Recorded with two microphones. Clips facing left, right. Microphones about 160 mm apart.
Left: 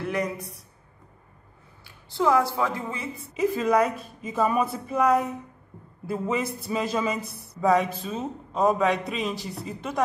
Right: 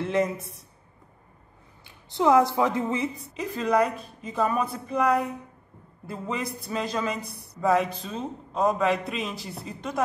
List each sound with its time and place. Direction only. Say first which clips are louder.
0.0 s speech: right 3 dB; 25° right (ahead or behind)
1.9 s speech: right 2 dB; 20° right (ahead or behind)
3.3 s speech: left 2 dB; 5° left (ahead or behind)